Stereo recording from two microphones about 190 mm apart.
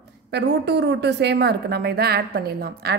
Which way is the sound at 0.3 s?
60° right (ahead or behind).